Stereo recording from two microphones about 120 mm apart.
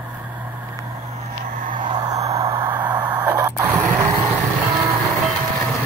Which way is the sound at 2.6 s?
15° right (ahead or behind).